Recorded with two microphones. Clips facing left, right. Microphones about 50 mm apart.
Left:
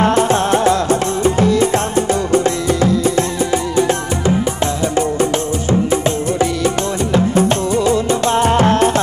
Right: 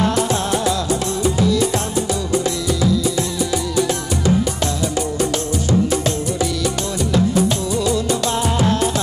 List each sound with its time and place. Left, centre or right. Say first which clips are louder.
0.0 s music: left 5 dB; left
4.9 s music: left 5 dB; left